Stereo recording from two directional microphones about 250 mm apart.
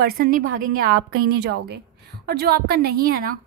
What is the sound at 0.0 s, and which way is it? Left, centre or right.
A woman's voice, right.